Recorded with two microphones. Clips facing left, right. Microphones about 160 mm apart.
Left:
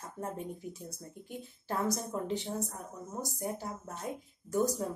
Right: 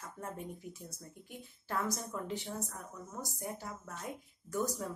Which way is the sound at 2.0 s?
30° left (ahead or behind).